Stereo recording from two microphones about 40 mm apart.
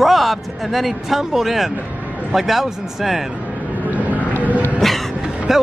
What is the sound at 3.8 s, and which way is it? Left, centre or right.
Vehicle, right.